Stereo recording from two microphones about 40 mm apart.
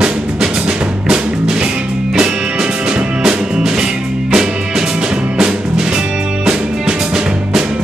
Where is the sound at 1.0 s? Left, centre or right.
Right.